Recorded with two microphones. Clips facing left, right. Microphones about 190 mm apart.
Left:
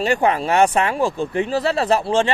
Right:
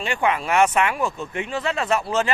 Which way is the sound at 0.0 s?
35° left (ahead or behind).